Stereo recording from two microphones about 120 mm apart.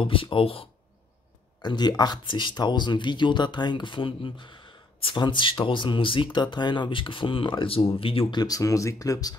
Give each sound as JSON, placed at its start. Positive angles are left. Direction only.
{"t": 0.0, "sound": "speech", "side_deg": 45}
{"t": 1.6, "sound": "speech", "side_deg": 35}
{"t": 8.4, "sound": "speech", "side_deg": 30}